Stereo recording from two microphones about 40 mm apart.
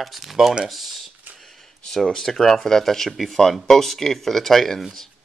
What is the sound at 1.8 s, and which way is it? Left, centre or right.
Speech, centre.